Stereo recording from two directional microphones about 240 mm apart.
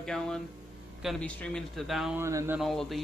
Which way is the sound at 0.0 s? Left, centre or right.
Centre.